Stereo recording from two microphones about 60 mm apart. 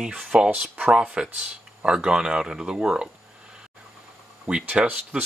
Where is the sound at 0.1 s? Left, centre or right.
Right.